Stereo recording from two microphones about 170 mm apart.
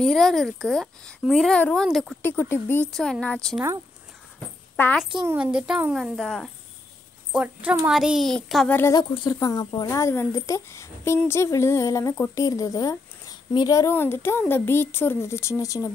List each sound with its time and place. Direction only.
0.0 s speech: centre (ahead or behind)
2.2 s speech: 10° left (ahead or behind)
2.9 s speech: 5° left (ahead or behind)
4.7 s a child's voice: 10° left (ahead or behind)
5.2 s speech: 10° right (ahead or behind)
7.9 s speech: centre (ahead or behind)
8.7 s speech: 15° left (ahead or behind)